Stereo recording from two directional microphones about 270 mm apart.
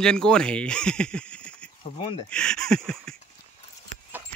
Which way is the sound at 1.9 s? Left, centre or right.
Centre.